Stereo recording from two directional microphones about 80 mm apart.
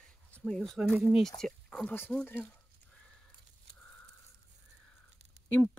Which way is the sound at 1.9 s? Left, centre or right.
Centre.